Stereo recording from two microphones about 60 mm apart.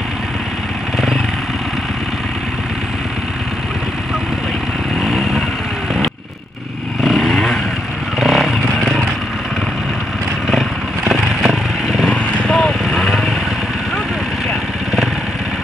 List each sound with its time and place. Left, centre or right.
5.0 s vehicle: centre
7.0 s motorcycle: centre
8.2 s vehicle: centre
11.1 s vehicle: centre
12.4 s vehicle: centre